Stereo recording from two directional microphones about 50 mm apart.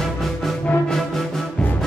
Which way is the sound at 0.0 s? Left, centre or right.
Centre.